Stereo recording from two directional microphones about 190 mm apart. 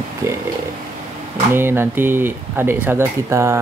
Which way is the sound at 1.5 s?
10° right (ahead or behind).